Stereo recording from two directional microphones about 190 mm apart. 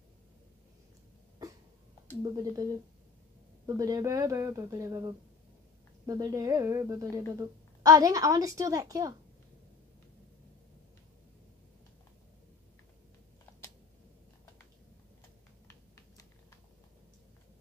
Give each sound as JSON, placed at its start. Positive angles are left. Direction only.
{"t": 2.2, "sound": "speech", "side_deg": -20}